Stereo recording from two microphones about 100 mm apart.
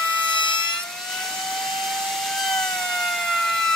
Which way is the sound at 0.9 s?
5° left (ahead or behind).